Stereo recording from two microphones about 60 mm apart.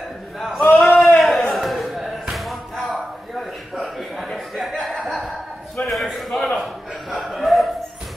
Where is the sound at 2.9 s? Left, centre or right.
Centre.